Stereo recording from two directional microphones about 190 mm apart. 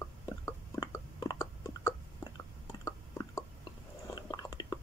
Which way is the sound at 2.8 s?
15° left (ahead or behind).